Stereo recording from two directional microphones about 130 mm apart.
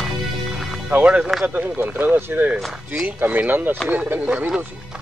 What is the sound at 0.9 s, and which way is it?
Speech, 10° right (ahead or behind).